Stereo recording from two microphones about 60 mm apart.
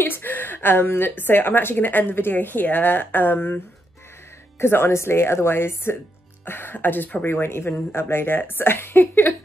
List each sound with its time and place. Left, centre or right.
0.0 s a woman's voice: left